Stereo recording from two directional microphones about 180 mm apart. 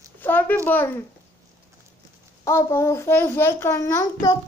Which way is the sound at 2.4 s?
15° left (ahead or behind).